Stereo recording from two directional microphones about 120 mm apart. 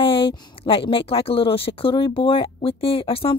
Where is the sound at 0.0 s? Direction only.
50° left (ahead or behind).